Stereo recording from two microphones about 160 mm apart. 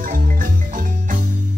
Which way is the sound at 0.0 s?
60° right (ahead or behind).